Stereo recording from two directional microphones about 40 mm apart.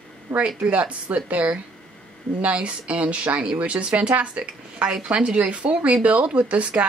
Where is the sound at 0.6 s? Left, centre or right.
Right.